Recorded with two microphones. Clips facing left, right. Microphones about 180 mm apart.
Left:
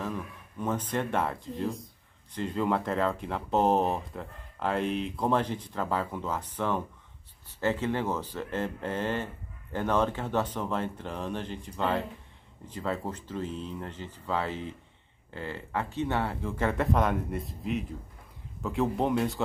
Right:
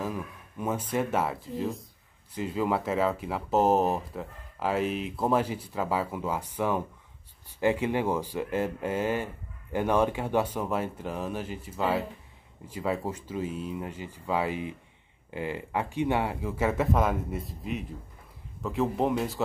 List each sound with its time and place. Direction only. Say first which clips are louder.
0.0 s speech: right 1 dB; 10° right (ahead or behind)